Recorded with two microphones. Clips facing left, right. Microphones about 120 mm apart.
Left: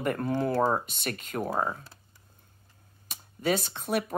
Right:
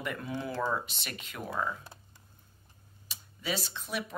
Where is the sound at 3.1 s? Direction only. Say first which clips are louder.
Left 8 dB; 50° left (ahead or behind).